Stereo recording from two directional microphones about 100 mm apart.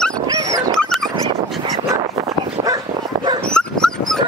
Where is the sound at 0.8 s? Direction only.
5° left (ahead or behind).